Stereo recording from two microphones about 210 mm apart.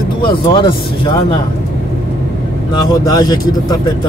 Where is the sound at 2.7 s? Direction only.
20° left (ahead or behind).